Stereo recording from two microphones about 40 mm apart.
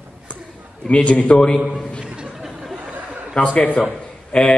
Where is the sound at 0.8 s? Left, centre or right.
Left.